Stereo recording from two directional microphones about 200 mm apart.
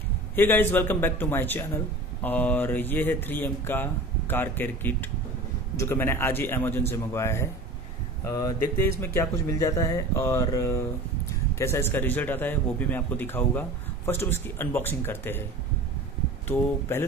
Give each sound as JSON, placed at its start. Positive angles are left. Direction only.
{"t": 0.4, "sound": "a man's voice", "side_deg": 10}